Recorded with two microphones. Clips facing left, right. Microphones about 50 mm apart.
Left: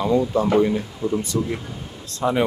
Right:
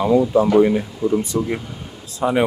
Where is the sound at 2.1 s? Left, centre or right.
Centre.